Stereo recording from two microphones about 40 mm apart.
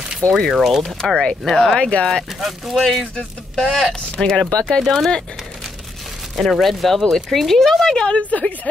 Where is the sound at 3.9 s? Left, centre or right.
Centre.